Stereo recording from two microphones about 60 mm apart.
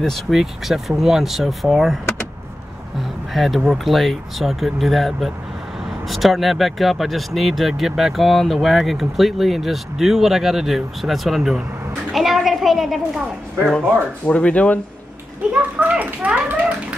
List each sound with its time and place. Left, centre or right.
0.3 s speech: centre
3.3 s speech: centre
14.2 s speech: left
15.5 s a sound: right
16.3 s bathtub: right